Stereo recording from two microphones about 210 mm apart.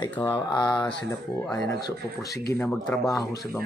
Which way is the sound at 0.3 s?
20° left (ahead or behind).